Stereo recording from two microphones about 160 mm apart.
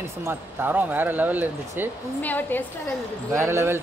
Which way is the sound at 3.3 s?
15° right (ahead or behind).